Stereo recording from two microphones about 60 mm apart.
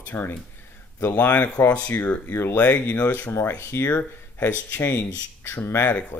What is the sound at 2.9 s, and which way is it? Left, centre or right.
Speech, left.